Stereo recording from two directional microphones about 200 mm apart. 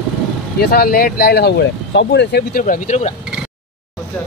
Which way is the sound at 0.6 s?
50° left (ahead or behind).